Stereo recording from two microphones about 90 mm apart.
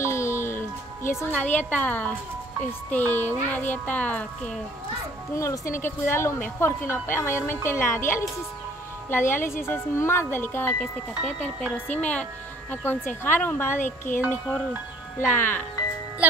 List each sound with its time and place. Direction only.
0.0 s music: 30° left (ahead or behind)
1.3 s a woman's voice: 15° left (ahead or behind)
5.3 s speech: 35° left (ahead or behind)
10.8 s a woman's voice: 10° left (ahead or behind)
15.1 s speech: 25° left (ahead or behind)